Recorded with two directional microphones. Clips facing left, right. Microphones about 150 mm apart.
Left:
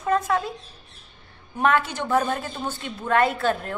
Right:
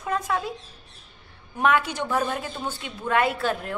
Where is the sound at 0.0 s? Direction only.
10° right (ahead or behind).